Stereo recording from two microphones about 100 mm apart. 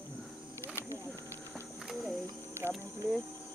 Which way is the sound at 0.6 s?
25° left (ahead or behind).